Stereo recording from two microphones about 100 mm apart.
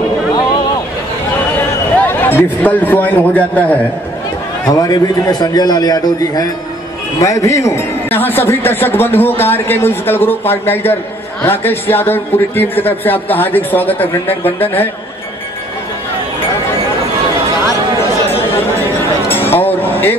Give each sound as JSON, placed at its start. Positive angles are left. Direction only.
{"t": 2.0, "sound": "a man's voice", "side_deg": 20}
{"t": 4.6, "sound": "a man's voice", "side_deg": 40}
{"t": 19.2, "sound": "music", "side_deg": 20}